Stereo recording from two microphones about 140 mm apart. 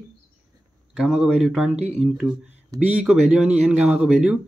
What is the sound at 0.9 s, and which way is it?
Speech, 5° right (ahead or behind).